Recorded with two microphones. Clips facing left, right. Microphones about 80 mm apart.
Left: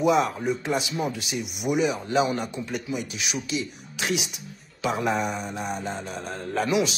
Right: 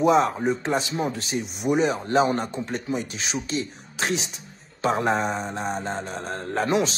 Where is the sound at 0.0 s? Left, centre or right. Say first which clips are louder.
Right 2 dB; right.